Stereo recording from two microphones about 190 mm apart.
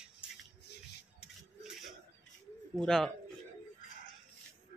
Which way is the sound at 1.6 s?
Centre (ahead or behind).